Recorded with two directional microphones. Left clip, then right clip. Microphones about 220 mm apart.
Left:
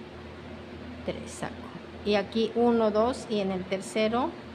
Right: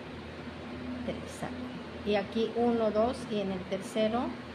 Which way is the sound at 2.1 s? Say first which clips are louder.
Left 4 dB; 15° left (ahead or behind).